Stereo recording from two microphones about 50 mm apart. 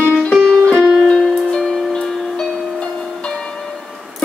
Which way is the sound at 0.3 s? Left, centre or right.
Centre.